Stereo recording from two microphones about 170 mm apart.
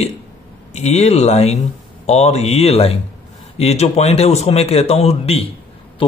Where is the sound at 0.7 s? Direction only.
40° left (ahead or behind).